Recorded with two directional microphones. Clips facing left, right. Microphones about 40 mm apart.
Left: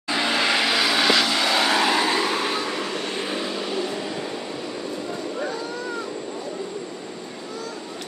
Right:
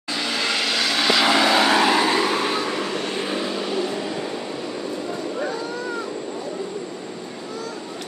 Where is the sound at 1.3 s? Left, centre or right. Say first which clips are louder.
Right 4 dB; right.